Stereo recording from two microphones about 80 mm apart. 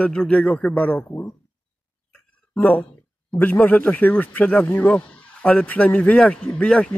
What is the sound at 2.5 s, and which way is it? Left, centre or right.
A man's voice, left.